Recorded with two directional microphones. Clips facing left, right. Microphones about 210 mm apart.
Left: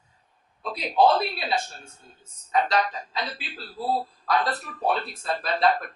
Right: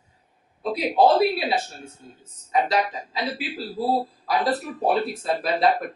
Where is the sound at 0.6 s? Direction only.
5° right (ahead or behind).